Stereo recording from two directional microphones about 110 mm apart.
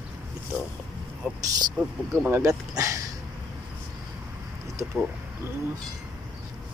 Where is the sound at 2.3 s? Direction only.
30° right (ahead or behind).